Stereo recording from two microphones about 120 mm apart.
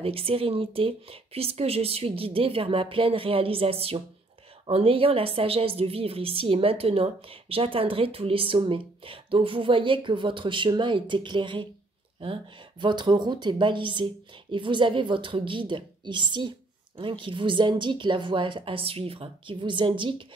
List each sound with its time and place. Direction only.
0.0 s a woman's voice: 50° right (ahead or behind)